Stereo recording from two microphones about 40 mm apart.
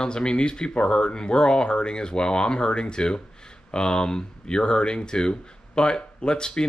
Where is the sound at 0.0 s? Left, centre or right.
Left.